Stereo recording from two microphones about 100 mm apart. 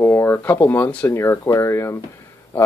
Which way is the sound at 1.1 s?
30° left (ahead or behind).